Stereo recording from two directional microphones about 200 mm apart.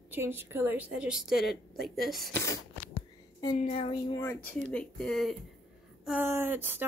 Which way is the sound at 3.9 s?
20° left (ahead or behind).